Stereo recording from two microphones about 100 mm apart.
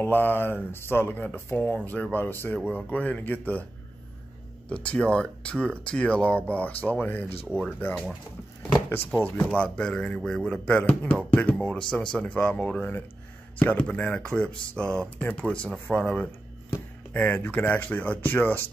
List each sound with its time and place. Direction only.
0.0 s speech: 20° left (ahead or behind)
4.6 s speech: 10° left (ahead or behind)
9.1 s speech: 15° left (ahead or behind)
16.3 s speech: 20° left (ahead or behind)